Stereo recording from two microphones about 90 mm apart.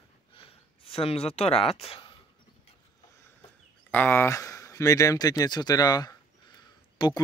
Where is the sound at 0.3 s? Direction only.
90° left.